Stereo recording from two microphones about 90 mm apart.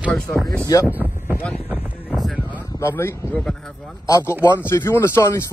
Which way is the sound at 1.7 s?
20° right (ahead or behind).